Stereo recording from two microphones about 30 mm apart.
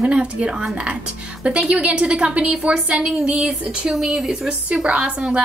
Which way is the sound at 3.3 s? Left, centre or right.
Right.